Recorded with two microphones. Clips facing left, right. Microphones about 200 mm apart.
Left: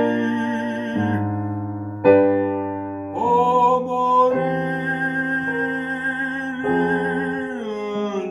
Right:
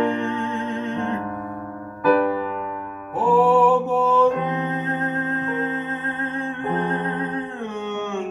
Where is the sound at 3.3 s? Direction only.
5° right (ahead or behind).